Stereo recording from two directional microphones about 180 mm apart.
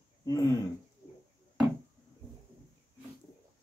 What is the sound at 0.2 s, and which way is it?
Speech, 20° left (ahead or behind).